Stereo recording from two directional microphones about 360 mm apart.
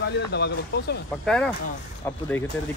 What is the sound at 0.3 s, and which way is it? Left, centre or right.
Speech, left.